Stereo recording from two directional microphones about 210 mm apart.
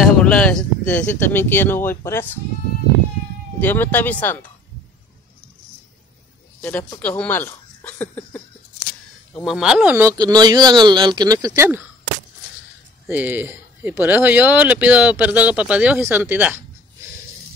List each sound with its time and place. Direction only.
0.0 s speech: 5° left (ahead or behind)
3.6 s speech: 10° left (ahead or behind)
6.6 s speech: 10° left (ahead or behind); by 11.8 s 10° right (ahead or behind)
13.0 s speech: 10° right (ahead or behind)